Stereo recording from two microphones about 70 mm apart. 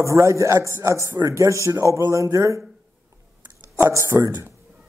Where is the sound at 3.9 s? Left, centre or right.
Right.